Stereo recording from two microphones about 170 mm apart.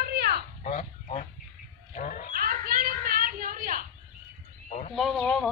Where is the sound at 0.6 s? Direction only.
45° left (ahead or behind).